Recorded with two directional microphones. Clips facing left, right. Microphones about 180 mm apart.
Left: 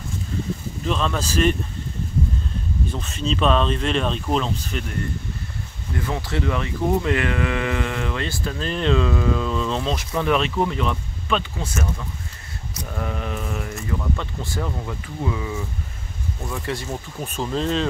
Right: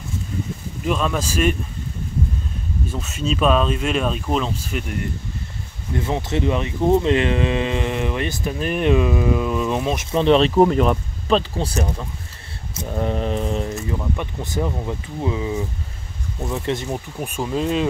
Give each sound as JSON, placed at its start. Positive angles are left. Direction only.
{"t": 0.8, "sound": "speech", "side_deg": -10}
{"t": 2.9, "sound": "speech", "side_deg": -5}
{"t": 5.9, "sound": "speech", "side_deg": -20}
{"t": 12.7, "sound": "mantra", "side_deg": -30}
{"t": 13.7, "sound": "speech", "side_deg": -20}